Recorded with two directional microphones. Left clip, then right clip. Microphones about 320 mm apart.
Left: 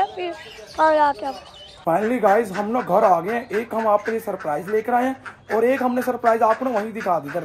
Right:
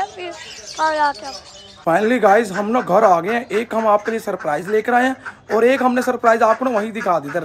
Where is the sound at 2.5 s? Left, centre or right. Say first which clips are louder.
Right 3 dB; right.